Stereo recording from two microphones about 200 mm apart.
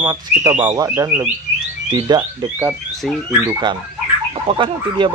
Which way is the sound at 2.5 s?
5° right (ahead or behind).